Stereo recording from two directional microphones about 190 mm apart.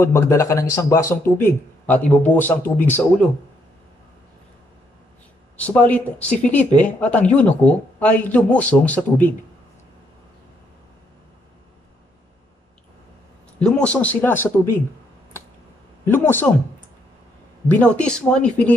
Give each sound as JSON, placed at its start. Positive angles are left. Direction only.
{"t": 0.0, "sound": "a man's voice", "side_deg": 15}
{"t": 5.7, "sound": "a man's voice", "side_deg": 10}
{"t": 13.6, "sound": "a man's voice", "side_deg": 5}
{"t": 16.1, "sound": "a man's voice", "side_deg": 10}
{"t": 17.6, "sound": "a man's voice", "side_deg": 5}